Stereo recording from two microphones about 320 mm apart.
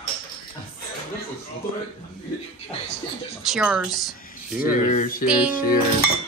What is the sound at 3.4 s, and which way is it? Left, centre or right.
Speech, centre.